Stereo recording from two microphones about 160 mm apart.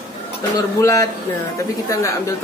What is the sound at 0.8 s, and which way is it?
Speech, 20° left (ahead or behind).